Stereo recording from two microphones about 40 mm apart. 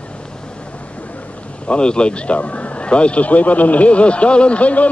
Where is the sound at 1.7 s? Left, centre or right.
Left.